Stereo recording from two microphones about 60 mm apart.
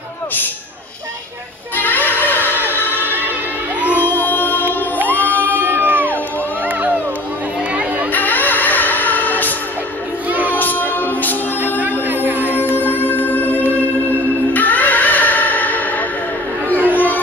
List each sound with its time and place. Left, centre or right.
1.8 s music: left
4.0 s music: left
5.1 s crowd: left
5.6 s music: right
6.7 s a sound: right
8.1 s music: left
10.3 s music: right
10.6 s music: left
12.1 s music: right
12.7 s music: left
16.6 s a sound: left